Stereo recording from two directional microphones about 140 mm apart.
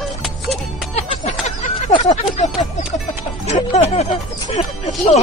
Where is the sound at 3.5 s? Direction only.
55° left (ahead or behind).